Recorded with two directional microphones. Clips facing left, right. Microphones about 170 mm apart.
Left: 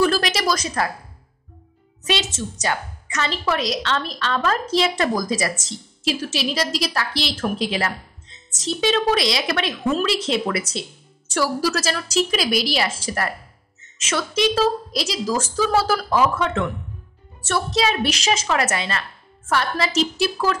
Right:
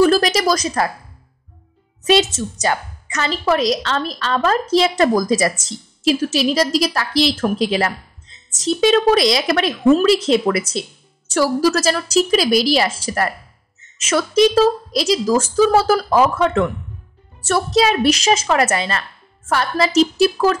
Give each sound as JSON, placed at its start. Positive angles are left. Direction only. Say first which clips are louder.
{"t": 0.0, "sound": "a woman's voice", "louder": "right 6 dB", "side_deg": -40}
{"t": 2.0, "sound": "a woman's voice", "louder": "right 9 dB", "side_deg": -45}